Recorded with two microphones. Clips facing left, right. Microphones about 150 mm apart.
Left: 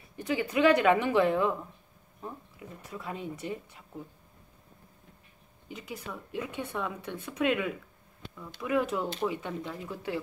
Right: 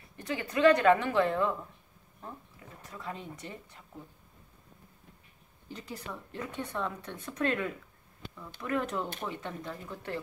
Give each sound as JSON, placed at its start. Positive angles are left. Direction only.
{"t": 0.2, "sound": "speech", "side_deg": 10}
{"t": 2.9, "sound": "speech", "side_deg": 10}
{"t": 5.7, "sound": "speech", "side_deg": 5}